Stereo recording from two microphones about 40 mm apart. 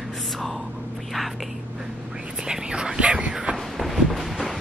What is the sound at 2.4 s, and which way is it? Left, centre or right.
Whispering, centre.